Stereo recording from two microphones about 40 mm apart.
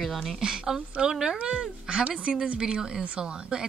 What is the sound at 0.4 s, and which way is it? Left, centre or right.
Speech, centre.